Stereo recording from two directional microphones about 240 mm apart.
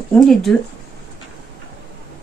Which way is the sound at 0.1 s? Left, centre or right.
Centre.